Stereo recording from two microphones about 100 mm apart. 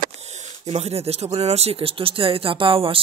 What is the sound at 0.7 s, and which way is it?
Speech, 90° right.